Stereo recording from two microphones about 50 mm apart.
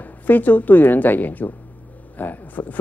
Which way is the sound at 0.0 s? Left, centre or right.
Left.